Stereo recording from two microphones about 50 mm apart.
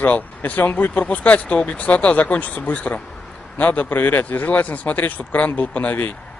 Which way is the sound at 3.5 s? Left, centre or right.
Left.